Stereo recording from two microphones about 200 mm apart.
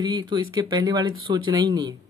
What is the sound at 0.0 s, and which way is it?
Speech, 25° right (ahead or behind).